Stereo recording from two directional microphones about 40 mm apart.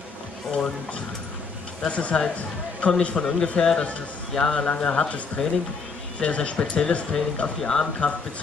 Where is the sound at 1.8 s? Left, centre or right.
Left.